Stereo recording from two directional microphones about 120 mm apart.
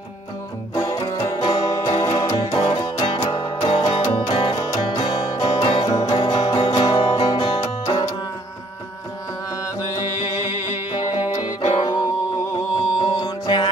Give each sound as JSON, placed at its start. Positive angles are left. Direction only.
{"t": 0.7, "sound": "music", "side_deg": 30}
{"t": 11.4, "sound": "music", "side_deg": 35}